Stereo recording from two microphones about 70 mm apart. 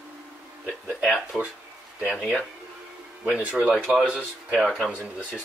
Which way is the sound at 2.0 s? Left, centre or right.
Centre.